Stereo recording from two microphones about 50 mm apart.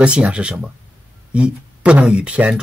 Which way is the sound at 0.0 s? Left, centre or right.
Right.